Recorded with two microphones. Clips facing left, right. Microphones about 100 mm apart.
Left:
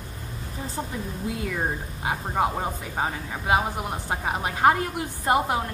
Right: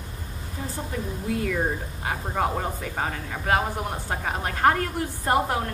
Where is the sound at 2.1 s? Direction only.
20° left (ahead or behind).